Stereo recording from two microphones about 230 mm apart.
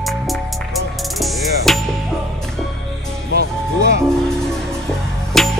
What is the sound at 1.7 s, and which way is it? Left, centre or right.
Music, centre.